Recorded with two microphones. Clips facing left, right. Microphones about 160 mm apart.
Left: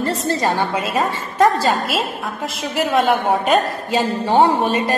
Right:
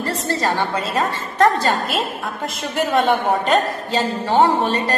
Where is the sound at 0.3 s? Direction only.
15° left (ahead or behind).